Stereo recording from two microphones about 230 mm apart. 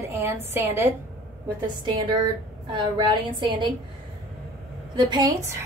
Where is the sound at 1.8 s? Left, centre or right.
Centre.